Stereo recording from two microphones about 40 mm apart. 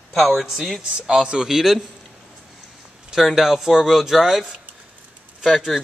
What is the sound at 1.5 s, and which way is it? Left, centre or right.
Speech, centre.